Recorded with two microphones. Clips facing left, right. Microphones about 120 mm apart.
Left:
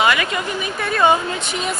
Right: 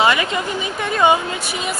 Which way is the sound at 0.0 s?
25° right (ahead or behind).